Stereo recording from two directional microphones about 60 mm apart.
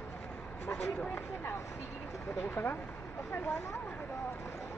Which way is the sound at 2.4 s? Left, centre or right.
Left.